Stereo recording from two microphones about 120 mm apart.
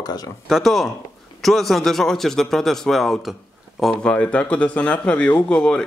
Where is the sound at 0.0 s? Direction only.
35° left (ahead or behind).